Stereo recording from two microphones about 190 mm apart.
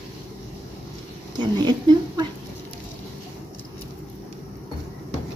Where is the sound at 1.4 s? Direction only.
25° right (ahead or behind).